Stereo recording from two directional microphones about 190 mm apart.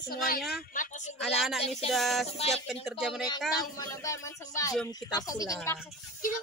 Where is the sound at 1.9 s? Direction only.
Centre (ahead or behind).